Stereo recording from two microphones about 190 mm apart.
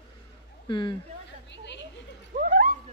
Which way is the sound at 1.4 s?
70° left (ahead or behind).